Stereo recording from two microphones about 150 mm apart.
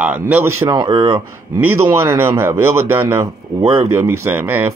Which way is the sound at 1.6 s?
15° right (ahead or behind).